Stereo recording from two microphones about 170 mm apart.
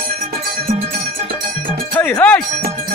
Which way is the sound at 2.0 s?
10° left (ahead or behind).